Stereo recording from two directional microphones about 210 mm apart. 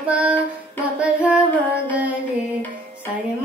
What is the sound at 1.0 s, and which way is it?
Music, 5° right (ahead or behind).